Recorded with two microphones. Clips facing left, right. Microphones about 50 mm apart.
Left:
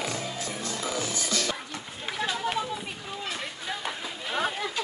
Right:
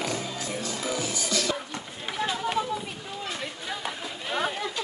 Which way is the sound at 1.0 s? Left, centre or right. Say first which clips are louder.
Right 1 dB; left.